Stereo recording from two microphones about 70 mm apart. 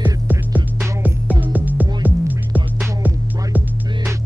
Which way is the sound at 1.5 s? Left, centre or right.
Right.